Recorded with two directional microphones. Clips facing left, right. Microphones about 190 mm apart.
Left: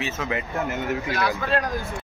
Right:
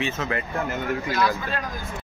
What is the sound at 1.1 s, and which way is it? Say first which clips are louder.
Speech: left 2 dB; 70° left (ahead or behind).